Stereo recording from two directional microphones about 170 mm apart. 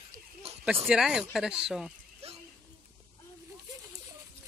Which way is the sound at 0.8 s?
5° right (ahead or behind).